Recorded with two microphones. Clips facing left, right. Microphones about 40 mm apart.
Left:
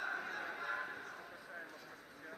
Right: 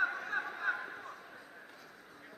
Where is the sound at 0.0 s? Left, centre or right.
Right.